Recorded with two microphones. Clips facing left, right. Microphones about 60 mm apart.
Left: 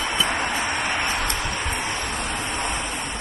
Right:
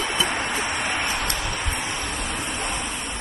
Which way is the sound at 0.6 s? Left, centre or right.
Centre.